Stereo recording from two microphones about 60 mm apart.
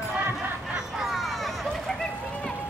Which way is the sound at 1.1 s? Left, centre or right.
Centre.